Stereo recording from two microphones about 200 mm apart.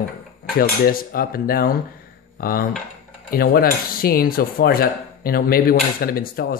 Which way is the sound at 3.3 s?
45° left (ahead or behind).